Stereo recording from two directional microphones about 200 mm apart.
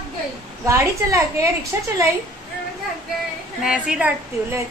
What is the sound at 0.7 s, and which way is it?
A woman's voice, 15° right (ahead or behind).